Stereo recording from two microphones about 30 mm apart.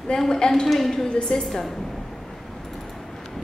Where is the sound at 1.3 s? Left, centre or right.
Left.